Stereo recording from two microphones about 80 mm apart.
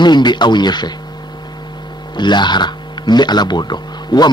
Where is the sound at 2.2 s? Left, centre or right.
Left.